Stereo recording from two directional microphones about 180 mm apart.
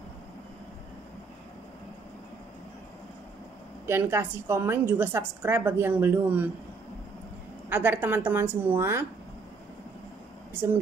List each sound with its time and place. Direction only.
3.8 s a woman's voice: 15° right (ahead or behind)
7.7 s a woman's voice: 10° right (ahead or behind)